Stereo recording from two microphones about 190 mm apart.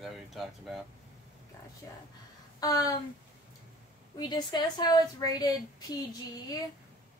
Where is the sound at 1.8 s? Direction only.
10° left (ahead or behind).